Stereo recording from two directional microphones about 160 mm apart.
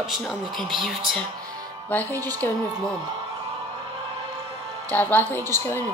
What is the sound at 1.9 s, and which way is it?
Speech, 10° left (ahead or behind).